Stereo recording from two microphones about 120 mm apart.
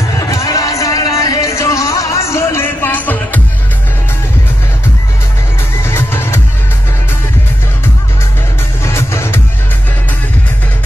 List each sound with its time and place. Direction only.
0.2 s music: 30° left (ahead or behind)
5.9 s music: 20° left (ahead or behind)
8.8 s music: 20° left (ahead or behind)